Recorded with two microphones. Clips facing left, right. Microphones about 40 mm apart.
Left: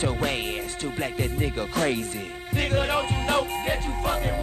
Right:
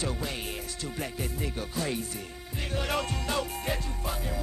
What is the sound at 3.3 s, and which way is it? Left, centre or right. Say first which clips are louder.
Music: left 8 dB; left.